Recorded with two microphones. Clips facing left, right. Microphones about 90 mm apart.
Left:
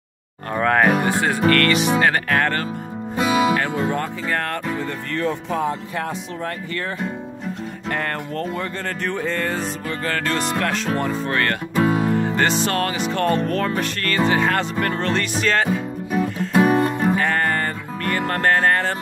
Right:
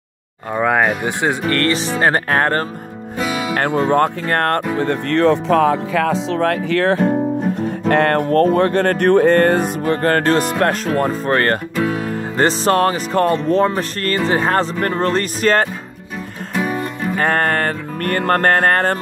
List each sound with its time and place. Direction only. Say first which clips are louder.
0.6 s speech: right 1 dB; 10° right (ahead or behind)
1.5 s speech: left 1 dB; 30° right (ahead or behind)
3.5 s music: right 6 dB; 55° right (ahead or behind)
4.7 s speech: right 9 dB; 70° right (ahead or behind)
7.9 s music: right 12 dB; 65° right (ahead or behind); by 10.5 s 50° right (ahead or behind)
11.0 s speech: right 5 dB; 40° right (ahead or behind)
11.8 s music: left 4 dB; 5° left (ahead or behind)
12.2 s speech: right 2 dB; 35° right (ahead or behind)
16.6 s music: left 4 dB; 40° left (ahead or behind)
17.2 s music: right 4 dB; 55° right (ahead or behind)